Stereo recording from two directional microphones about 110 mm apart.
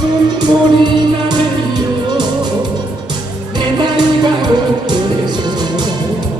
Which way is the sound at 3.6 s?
40° right (ahead or behind).